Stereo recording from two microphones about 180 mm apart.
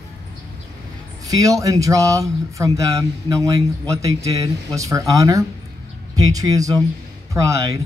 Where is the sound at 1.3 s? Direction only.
20° right (ahead or behind).